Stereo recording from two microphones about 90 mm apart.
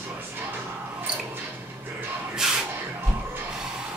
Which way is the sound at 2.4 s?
5° right (ahead or behind).